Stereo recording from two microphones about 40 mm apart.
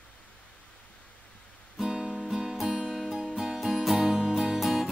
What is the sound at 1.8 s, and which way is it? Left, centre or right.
Music, centre.